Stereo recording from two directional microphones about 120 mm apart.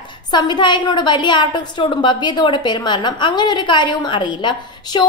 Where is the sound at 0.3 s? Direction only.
40° left (ahead or behind).